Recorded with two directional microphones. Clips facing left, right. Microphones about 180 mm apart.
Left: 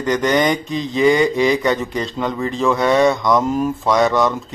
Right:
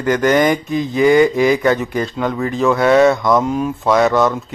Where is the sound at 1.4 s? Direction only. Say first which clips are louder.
Right 2 dB; 5° right (ahead or behind).